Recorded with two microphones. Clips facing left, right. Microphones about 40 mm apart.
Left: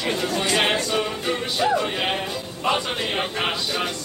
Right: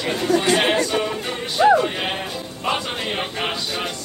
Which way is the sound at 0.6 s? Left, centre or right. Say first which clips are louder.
Right 2 dB; centre.